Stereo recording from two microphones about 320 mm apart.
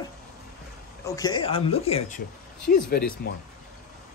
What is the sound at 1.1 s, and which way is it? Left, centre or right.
Speech, centre.